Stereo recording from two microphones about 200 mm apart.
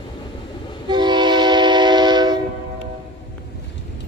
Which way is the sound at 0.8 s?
20° right (ahead or behind).